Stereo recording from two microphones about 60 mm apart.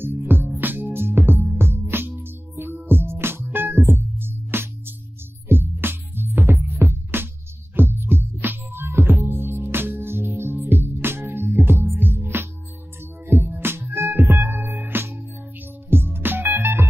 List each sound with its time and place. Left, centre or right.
0.0 s music: right